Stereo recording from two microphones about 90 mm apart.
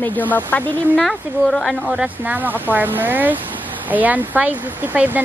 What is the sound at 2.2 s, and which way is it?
Speech, 20° right (ahead or behind).